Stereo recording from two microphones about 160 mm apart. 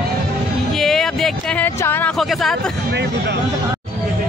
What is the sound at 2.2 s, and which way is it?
Speech, centre (ahead or behind).